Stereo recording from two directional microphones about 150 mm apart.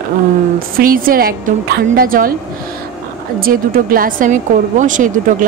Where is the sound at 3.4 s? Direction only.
70° right (ahead or behind).